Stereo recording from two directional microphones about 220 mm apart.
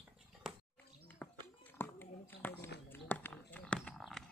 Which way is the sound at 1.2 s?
5° left (ahead or behind).